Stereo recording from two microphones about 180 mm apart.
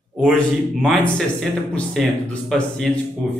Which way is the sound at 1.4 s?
Centre (ahead or behind).